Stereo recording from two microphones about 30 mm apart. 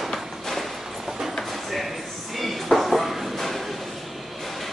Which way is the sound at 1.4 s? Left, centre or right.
Centre.